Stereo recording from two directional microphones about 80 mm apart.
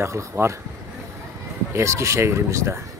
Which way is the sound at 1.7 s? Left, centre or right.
Right.